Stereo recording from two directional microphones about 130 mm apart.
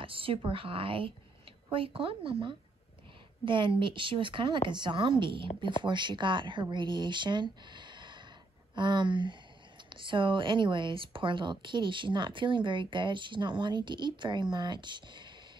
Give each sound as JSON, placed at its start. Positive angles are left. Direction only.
{"t": 0.0, "sound": "a woman's voice", "side_deg": -45}